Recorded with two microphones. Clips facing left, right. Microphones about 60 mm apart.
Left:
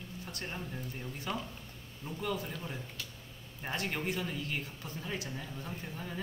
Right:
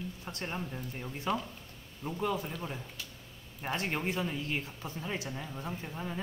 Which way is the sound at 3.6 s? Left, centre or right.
Right.